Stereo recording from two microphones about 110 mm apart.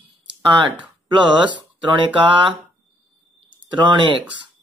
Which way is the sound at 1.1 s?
45° right (ahead or behind).